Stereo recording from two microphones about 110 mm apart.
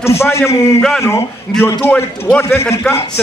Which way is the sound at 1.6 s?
20° left (ahead or behind).